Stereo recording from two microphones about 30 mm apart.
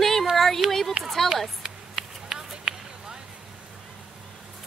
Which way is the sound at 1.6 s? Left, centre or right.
Centre.